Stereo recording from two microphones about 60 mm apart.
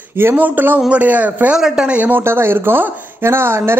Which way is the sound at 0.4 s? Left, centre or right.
Right.